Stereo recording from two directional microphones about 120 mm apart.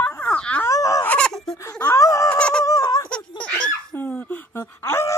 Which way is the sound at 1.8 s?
30° left (ahead or behind).